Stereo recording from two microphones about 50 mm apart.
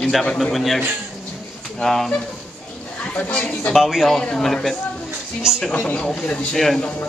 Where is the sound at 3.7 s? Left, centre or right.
Centre.